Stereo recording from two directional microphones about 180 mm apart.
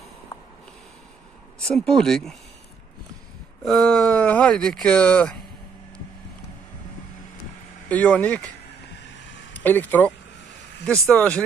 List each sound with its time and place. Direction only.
1.6 s speech: 5° left (ahead or behind)
3.6 s speech: 5° left (ahead or behind)
7.9 s speech: 5° left (ahead or behind)
9.5 s speech: 10° left (ahead or behind)